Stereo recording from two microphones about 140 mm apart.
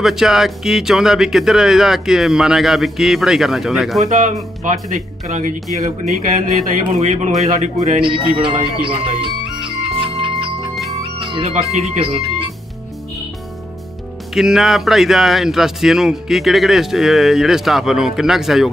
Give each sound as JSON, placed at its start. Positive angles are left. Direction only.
{"t": 0.0, "sound": "speech", "side_deg": -5}
{"t": 4.0, "sound": "speech", "side_deg": -65}
{"t": 8.0, "sound": "speech", "side_deg": -35}
{"t": 8.8, "sound": "music", "side_deg": -40}
{"t": 11.5, "sound": "speech", "side_deg": -50}
{"t": 14.3, "sound": "speech", "side_deg": -5}